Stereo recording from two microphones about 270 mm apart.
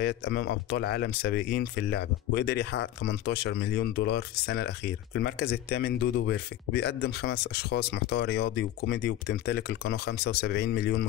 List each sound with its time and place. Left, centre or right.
0.0 s speech: left